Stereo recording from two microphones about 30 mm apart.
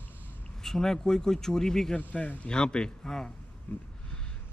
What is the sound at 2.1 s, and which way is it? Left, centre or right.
Speech, left.